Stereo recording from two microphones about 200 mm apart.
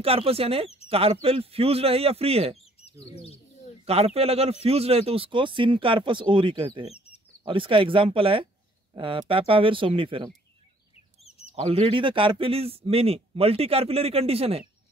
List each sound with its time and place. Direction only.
0.0 s a man's voice: 30° right (ahead or behind)
3.2 s bird: 30° left (ahead or behind)
3.8 s a man's voice: 30° right (ahead or behind)
11.2 s bird: 30° left (ahead or behind)
11.5 s a man's voice: 30° right (ahead or behind)